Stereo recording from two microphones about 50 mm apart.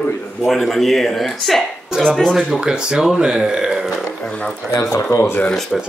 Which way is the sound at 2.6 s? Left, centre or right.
Centre.